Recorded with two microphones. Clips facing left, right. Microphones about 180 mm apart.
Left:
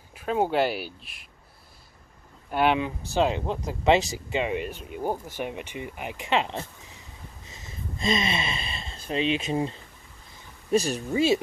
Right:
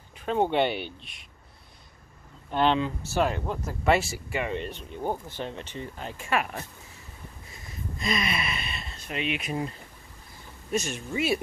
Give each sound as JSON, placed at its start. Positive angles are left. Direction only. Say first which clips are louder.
{"t": 0.1, "sound": "speech", "louder": "even", "side_deg": 5}
{"t": 2.5, "sound": "speech", "louder": "left 1 dB", "side_deg": 10}
{"t": 4.6, "sound": "speech", "louder": "left 2 dB", "side_deg": 10}